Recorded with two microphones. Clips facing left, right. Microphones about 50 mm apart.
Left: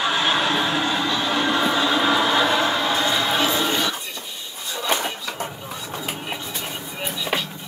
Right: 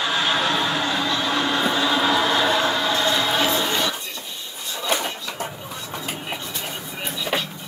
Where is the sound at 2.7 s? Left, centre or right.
Centre.